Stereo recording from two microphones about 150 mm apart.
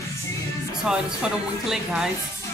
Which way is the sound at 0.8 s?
5° right (ahead or behind).